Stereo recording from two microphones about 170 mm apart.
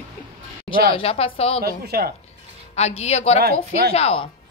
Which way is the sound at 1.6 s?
65° right (ahead or behind).